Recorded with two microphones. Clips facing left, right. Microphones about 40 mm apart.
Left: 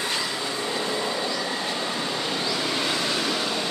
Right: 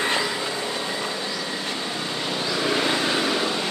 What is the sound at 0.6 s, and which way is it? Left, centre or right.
Train, centre.